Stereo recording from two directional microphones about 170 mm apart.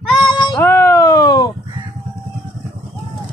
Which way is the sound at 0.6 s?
20° left (ahead or behind).